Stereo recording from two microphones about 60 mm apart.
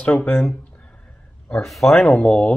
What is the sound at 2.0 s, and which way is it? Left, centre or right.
Speech, centre.